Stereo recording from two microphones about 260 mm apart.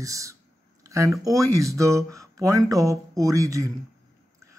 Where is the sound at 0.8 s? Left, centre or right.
Centre.